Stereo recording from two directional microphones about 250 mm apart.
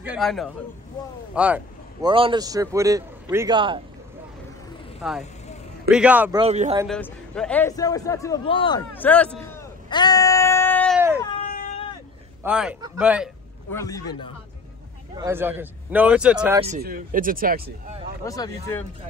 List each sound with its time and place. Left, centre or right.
0.0 s a man's voice: centre
2.0 s a man's voice: centre
5.0 s a man's voice: centre
6.4 s speech: right
6.9 s a man's voice: centre
8.9 s a sound: centre
11.1 s cat: centre
11.4 s a sound: left
12.4 s a man's voice: centre
13.7 s a man's voice: centre
15.1 s a man's voice: centre
16.6 s speech: right
18.2 s a man's voice: centre